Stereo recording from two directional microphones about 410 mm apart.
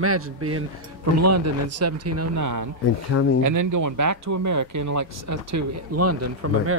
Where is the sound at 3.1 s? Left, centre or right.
Left.